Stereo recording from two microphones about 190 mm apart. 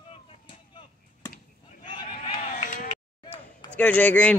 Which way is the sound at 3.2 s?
25° left (ahead or behind).